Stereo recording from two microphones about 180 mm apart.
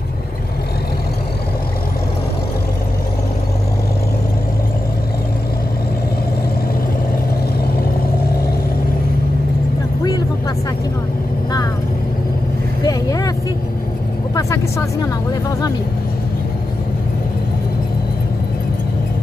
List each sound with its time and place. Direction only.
12.8 s vehicle: 20° left (ahead or behind)
14.3 s vehicle: 20° left (ahead or behind)